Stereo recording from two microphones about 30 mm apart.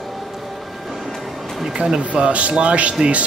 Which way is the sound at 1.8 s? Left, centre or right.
Right.